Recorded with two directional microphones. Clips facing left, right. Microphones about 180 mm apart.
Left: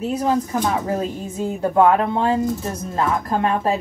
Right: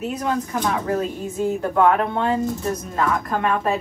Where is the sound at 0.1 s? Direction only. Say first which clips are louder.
Left 7 dB; 30° left (ahead or behind).